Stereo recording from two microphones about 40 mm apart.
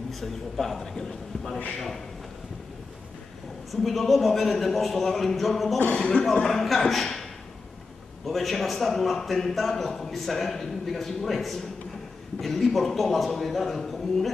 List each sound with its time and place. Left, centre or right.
0.1 s a man's voice: centre
3.7 s a man's voice: centre
5.9 s speech: left
6.4 s a man's voice: centre
8.3 s a man's voice: centre